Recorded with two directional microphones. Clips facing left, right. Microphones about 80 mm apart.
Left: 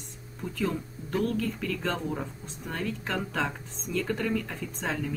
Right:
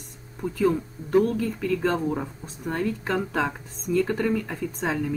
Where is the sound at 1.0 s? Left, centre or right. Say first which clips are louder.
Right 3 dB; right.